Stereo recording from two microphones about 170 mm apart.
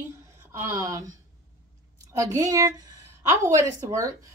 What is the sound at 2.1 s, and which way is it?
A woman's voice, 20° right (ahead or behind).